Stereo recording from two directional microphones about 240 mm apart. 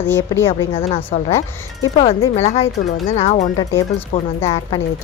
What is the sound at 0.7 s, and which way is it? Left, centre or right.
Speech, left.